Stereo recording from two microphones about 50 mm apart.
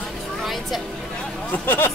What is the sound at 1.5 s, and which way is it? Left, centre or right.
Speech, left.